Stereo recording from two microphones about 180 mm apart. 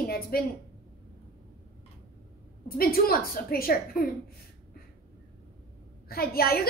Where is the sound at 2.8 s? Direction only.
55° left (ahead or behind).